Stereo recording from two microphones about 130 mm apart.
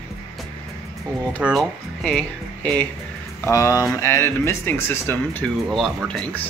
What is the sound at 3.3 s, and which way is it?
Speech, 25° left (ahead or behind).